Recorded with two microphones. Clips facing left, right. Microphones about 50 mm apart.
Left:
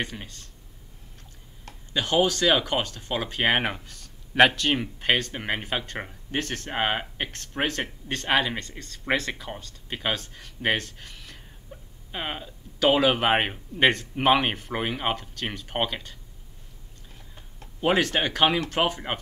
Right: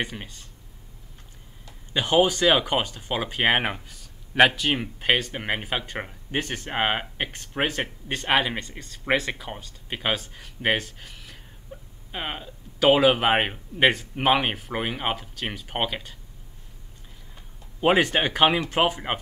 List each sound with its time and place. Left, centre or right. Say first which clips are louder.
0.0 s speech: right 2 dB; centre
2.0 s speech: right 2 dB; centre
17.7 s speech: right 3 dB; right